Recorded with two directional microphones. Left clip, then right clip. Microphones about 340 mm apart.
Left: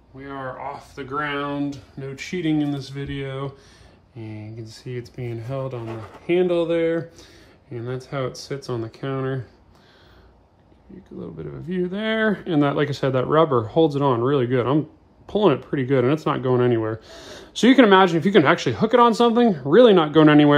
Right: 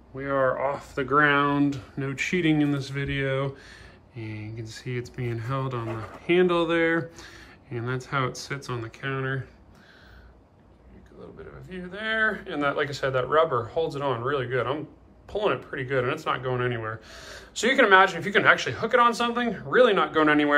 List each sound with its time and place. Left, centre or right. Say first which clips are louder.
0.2 s speech: right 7 dB; centre
11.7 s speech: left 5 dB; centre